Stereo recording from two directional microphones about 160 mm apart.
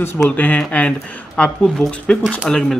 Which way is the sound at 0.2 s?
10° left (ahead or behind).